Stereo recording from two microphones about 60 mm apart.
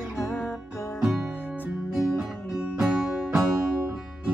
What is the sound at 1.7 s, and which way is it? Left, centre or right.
Music, centre.